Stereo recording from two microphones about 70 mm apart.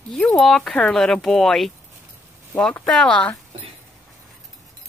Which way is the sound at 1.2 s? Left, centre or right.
Centre.